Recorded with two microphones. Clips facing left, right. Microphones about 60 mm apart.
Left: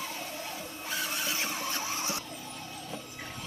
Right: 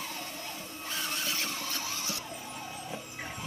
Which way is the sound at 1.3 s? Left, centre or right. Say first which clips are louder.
Left 2 dB; left.